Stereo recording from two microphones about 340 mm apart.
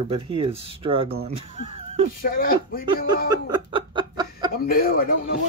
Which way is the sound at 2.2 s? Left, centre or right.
Left.